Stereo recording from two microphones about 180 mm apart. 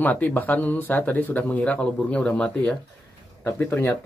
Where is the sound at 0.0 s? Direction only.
10° left (ahead or behind).